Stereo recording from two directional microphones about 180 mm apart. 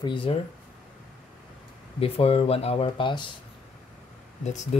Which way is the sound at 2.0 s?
30° left (ahead or behind).